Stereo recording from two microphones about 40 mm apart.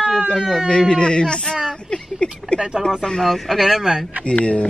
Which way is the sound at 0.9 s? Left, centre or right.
Left.